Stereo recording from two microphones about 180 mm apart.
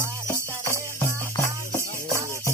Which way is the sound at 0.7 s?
15° left (ahead or behind).